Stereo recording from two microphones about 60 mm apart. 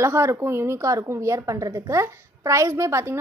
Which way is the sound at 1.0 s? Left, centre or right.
Right.